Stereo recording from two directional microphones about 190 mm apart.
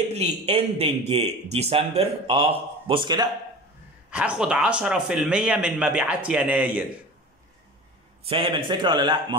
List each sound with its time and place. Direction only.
0.1 s a man's voice: 35° right (ahead or behind)
4.1 s a man's voice: 5° right (ahead or behind)
8.3 s a man's voice: 25° right (ahead or behind)